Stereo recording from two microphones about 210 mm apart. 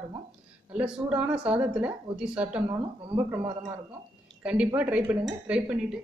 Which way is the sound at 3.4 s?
30° right (ahead or behind).